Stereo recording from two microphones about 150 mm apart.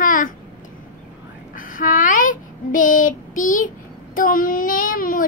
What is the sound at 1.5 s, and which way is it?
Child singing, 60° left (ahead or behind).